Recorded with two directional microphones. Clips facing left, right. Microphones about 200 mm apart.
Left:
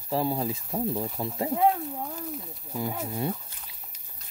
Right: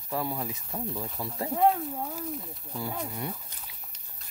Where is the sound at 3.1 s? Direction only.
30° left (ahead or behind).